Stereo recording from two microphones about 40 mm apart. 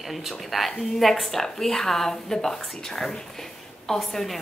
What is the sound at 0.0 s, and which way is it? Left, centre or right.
A woman's voice, centre.